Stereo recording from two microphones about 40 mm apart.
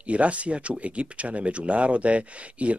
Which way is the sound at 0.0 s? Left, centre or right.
Right.